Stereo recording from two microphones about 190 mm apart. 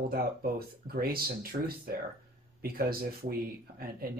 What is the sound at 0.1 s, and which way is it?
Speech, 50° right (ahead or behind).